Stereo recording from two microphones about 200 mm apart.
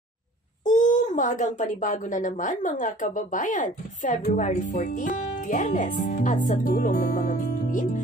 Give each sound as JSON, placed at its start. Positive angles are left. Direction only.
{"t": 0.7, "sound": "speech", "side_deg": 40}